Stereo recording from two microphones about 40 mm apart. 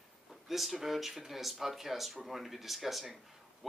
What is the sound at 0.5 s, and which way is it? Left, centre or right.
Speech, centre.